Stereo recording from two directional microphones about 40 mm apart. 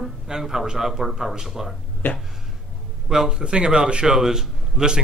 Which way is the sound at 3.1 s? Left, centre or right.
Centre.